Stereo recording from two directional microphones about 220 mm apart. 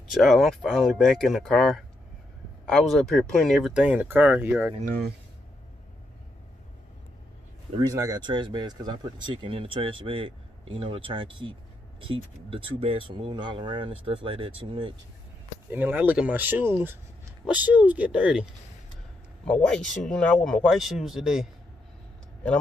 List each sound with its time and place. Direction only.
0.1 s speech: centre (ahead or behind)
4.8 s speech: 45° right (ahead or behind)
7.8 s speech: 15° right (ahead or behind)
15.7 s speech: 10° right (ahead or behind)